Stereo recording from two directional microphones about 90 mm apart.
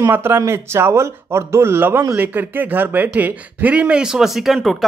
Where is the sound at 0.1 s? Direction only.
25° right (ahead or behind).